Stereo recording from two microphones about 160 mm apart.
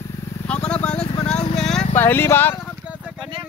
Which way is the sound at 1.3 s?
5° left (ahead or behind).